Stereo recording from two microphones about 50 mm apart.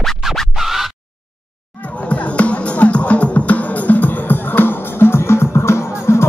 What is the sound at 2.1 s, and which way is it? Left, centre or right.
Music, left.